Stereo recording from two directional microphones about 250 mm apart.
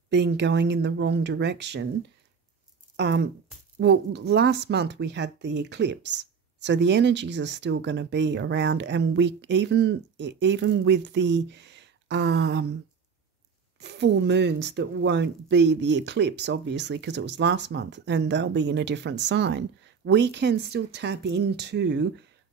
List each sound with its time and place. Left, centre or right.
0.1 s speech: right
3.0 s speech: right
13.7 s speech: right